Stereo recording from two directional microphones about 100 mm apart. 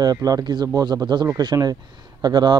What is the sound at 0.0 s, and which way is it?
Speech, 40° right (ahead or behind).